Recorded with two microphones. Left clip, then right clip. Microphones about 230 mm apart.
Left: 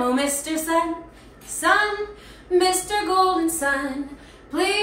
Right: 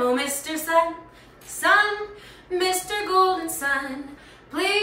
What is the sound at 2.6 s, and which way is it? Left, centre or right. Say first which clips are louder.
Female singing: left 4 dB; centre.